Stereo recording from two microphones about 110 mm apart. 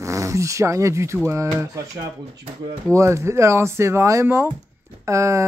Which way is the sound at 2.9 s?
25° right (ahead or behind).